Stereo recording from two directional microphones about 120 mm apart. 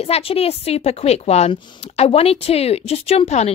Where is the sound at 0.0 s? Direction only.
50° left (ahead or behind).